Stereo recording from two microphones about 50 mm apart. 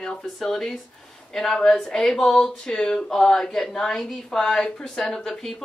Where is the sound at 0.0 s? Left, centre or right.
Centre.